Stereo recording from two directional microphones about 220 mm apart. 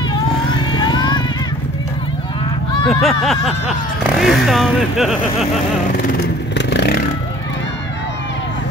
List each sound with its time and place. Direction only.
0.5 s vehicle: 20° left (ahead or behind)
2.9 s speech: centre (ahead or behind)
6.6 s vehicle: 50° left (ahead or behind)